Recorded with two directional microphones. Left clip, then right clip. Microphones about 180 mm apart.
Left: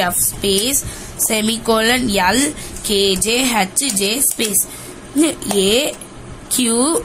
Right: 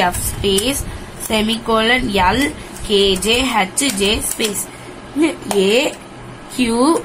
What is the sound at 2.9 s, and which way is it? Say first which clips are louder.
A woman's voice: right 2 dB; 90° left.